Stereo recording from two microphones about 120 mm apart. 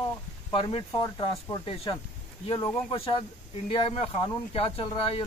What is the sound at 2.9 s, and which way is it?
Speech, 55° left (ahead or behind).